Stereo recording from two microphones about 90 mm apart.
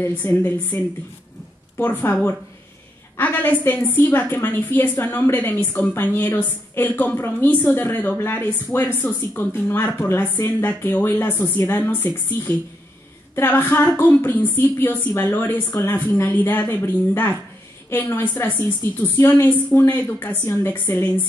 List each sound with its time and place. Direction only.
0.0 s a woman's voice: 20° left (ahead or behind)
3.2 s a woman's voice: 20° left (ahead or behind)